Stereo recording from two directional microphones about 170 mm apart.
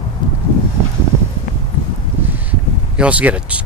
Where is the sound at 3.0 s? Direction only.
10° right (ahead or behind).